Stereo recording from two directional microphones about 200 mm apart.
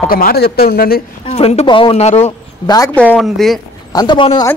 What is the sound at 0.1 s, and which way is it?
Speech, 50° left (ahead or behind).